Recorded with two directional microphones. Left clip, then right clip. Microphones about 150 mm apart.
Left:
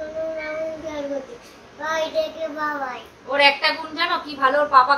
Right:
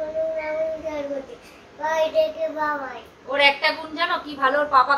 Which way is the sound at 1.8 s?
15° left (ahead or behind).